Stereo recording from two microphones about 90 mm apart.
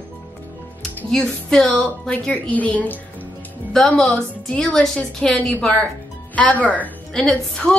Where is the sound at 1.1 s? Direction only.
10° left (ahead or behind).